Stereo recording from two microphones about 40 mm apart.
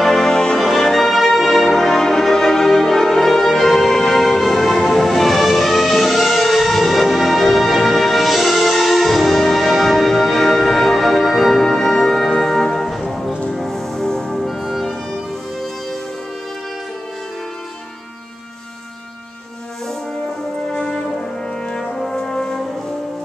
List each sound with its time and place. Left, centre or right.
0.0 s music: centre
0.3 s music: centre
0.6 s music: centre
14.4 s music: centre
20.7 s brass instrument: centre